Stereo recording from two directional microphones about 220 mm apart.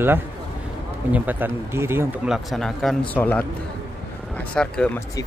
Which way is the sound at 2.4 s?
Centre (ahead or behind).